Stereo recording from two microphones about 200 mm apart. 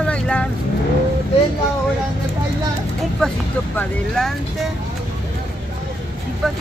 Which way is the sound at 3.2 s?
5° left (ahead or behind).